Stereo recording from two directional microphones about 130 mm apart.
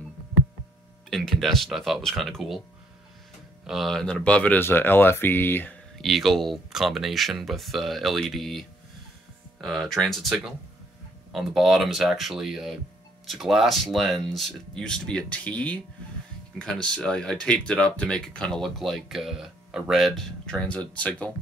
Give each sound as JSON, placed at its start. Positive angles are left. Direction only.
{"t": 1.1, "sound": "speech", "side_deg": 0}
{"t": 3.6, "sound": "speech", "side_deg": 0}
{"t": 5.9, "sound": "speech", "side_deg": 0}